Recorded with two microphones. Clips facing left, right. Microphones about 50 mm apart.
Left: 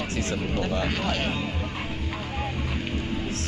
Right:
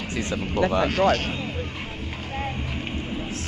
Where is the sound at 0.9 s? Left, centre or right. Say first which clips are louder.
Right 8 dB; right.